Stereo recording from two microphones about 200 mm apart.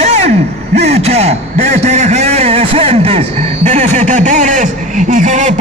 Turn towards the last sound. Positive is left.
turn(degrees=-40)  # may be behind; listen again after turning